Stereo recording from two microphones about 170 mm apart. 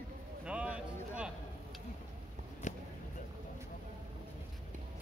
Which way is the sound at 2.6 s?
45° left (ahead or behind).